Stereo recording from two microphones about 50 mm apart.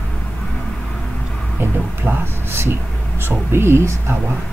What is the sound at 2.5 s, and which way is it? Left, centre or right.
Speech, right.